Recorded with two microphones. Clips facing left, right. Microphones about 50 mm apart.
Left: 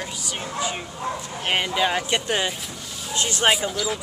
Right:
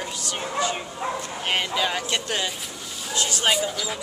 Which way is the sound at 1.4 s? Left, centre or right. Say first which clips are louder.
Left 3 dB; centre.